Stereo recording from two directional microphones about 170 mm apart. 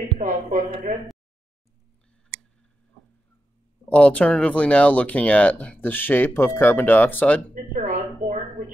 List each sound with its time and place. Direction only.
0.2 s speech: 50° right (ahead or behind)
3.9 s speech: 5° left (ahead or behind)
7.8 s a sound: 45° right (ahead or behind)